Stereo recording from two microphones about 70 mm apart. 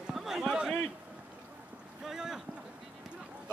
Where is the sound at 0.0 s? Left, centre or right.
Centre.